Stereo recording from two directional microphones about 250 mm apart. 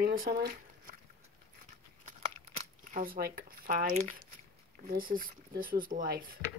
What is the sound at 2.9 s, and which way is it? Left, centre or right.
Speech, right.